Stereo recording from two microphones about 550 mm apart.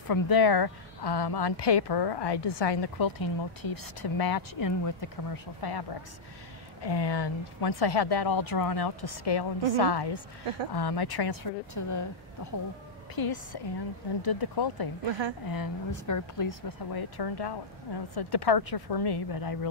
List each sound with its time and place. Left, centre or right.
0.1 s speech: left
15.0 s a woman's voice: right
15.4 s speech: left